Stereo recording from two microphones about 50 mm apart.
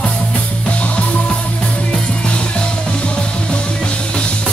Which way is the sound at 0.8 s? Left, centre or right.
Left.